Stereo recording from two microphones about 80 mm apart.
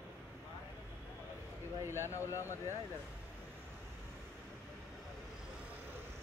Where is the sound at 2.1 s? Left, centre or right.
Left.